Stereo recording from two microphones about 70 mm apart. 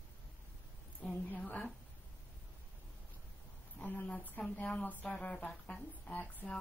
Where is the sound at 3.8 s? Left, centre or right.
Left.